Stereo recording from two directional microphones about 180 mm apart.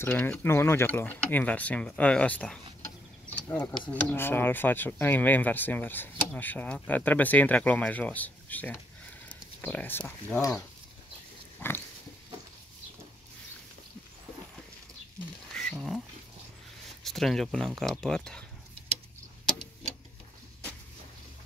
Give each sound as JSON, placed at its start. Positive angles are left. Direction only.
{"t": 0.0, "sound": "speech", "side_deg": 10}
{"t": 3.3, "sound": "a sound", "side_deg": 10}
{"t": 3.9, "sound": "speech", "side_deg": 10}
{"t": 11.6, "sound": "speech", "side_deg": 10}
{"t": 15.5, "sound": "a sound", "side_deg": 0}
{"t": 17.0, "sound": "speech", "side_deg": 0}